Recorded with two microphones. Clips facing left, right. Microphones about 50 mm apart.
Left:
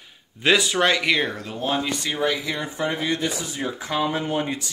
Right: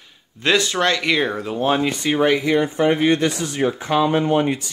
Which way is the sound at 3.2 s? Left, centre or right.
Right.